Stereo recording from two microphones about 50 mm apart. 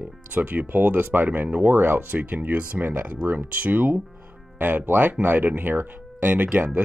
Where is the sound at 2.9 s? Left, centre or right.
Right.